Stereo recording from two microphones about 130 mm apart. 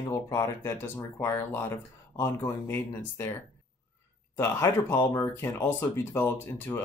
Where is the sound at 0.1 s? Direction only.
25° left (ahead or behind).